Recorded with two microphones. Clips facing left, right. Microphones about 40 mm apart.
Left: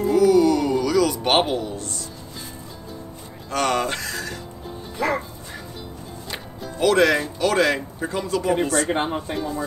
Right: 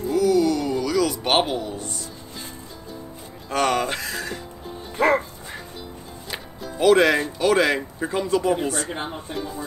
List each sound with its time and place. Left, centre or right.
0.1 s music: centre
1.8 s speech: centre
3.4 s music: centre
4.9 s music: right
6.3 s music: centre
6.9 s speech: centre
8.8 s speech: left
9.3 s speech: centre